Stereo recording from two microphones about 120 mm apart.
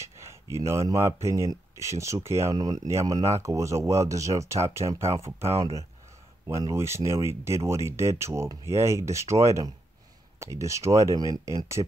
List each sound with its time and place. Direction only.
0.0 s speech: 25° right (ahead or behind)
2.5 s speech: 35° right (ahead or behind)